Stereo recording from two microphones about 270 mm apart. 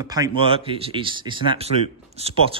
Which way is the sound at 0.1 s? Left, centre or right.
Centre.